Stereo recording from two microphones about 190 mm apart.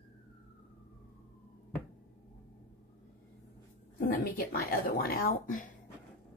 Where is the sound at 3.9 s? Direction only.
50° left (ahead or behind).